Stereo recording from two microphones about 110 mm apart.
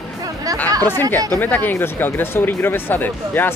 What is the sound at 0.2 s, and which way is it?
Music, 35° right (ahead or behind).